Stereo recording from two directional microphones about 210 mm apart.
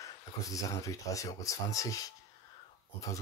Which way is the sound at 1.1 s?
15° left (ahead or behind).